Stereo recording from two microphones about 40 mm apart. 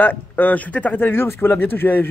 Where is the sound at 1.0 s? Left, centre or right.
Left.